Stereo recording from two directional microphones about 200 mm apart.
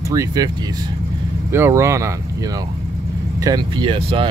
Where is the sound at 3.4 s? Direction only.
20° right (ahead or behind).